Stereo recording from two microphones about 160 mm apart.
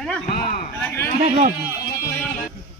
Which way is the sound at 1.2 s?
45° right (ahead or behind).